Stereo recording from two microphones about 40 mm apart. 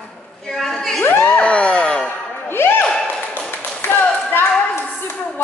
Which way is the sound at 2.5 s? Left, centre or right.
Left.